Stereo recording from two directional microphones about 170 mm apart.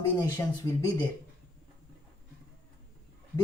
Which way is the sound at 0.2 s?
20° left (ahead or behind).